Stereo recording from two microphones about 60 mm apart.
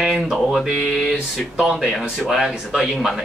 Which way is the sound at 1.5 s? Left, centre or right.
Centre.